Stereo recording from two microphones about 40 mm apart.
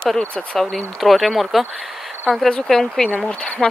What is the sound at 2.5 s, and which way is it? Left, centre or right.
Speech, centre.